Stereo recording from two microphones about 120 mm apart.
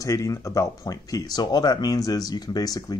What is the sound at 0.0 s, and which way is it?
Speech, 30° left (ahead or behind).